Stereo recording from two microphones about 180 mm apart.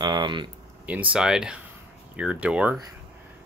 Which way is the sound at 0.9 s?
10° right (ahead or behind).